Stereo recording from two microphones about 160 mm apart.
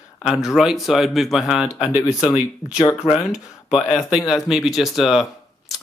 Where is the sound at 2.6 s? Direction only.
20° left (ahead or behind).